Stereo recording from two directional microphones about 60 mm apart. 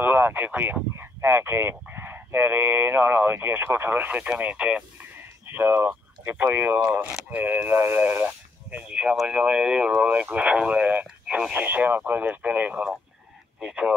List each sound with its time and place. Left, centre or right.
0.0 s speech: right
0.9 s speech: right; by 4.8 s centre
5.5 s speech: right
6.5 s speech: right
6.9 s speech: right
8.6 s speech: right
11.6 s speech: right
13.6 s speech: centre